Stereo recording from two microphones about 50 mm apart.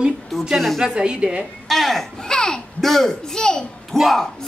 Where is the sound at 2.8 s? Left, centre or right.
Centre.